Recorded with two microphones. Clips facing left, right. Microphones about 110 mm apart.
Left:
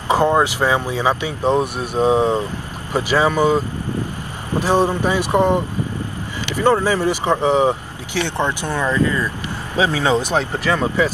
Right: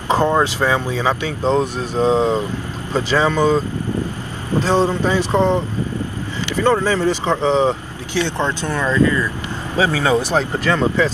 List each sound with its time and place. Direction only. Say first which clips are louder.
0.1 s speech: left 1 dB; 15° left (ahead or behind)